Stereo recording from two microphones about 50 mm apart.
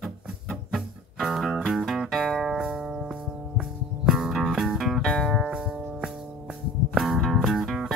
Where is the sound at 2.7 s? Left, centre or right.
Centre.